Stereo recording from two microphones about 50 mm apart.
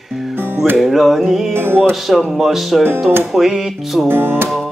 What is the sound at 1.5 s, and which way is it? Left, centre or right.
Music, right.